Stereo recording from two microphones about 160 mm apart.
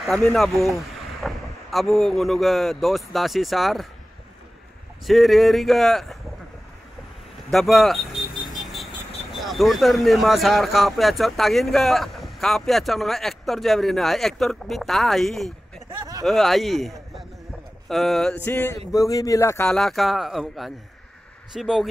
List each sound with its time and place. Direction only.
0.0 s speech: 5° left (ahead or behind)
5.0 s speech: centre (ahead or behind)
7.5 s vehicle: centre (ahead or behind)
9.3 s speech: centre (ahead or behind)
18.4 s a sound: 15° left (ahead or behind)
18.9 s speech: 20° left (ahead or behind)
19.6 s speech: 5° left (ahead or behind)